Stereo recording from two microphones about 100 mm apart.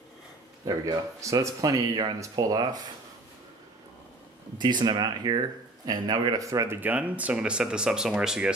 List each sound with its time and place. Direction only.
0.7 s speech: 40° right (ahead or behind)
4.6 s speech: 45° right (ahead or behind); by 6.8 s 30° right (ahead or behind)
6.8 s speech: 15° right (ahead or behind)